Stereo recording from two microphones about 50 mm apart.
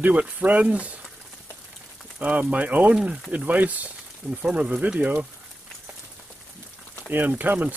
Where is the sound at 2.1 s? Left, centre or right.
Right.